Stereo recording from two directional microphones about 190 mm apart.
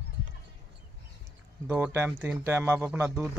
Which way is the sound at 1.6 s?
10° right (ahead or behind).